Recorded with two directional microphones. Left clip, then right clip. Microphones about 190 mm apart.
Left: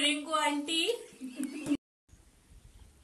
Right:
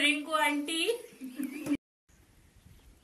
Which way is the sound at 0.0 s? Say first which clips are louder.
Right 2 dB; 5° right (ahead or behind).